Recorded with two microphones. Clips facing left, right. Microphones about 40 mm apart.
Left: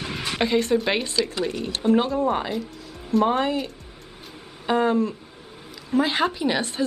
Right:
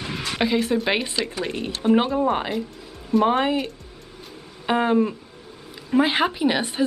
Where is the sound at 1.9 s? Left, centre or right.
Centre.